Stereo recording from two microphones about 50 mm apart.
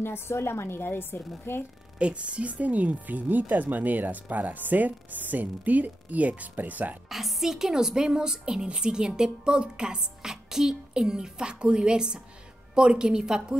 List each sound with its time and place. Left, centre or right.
0.0 s a woman's voice: left
2.0 s speech: right
7.1 s a woman's voice: centre